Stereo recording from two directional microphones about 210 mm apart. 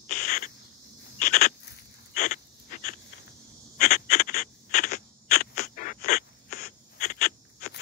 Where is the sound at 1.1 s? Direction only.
40° left (ahead or behind).